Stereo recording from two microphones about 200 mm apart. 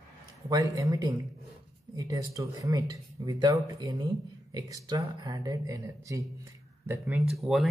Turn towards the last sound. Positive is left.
turn(degrees=0)  # may be behind; listen again after turning